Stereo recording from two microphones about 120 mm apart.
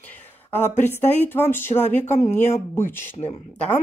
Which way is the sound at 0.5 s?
20° left (ahead or behind).